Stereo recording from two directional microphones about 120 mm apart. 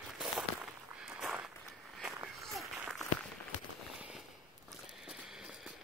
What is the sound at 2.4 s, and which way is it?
Applause, centre (ahead or behind).